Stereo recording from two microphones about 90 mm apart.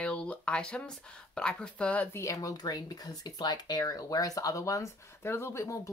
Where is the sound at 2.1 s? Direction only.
35° left (ahead or behind).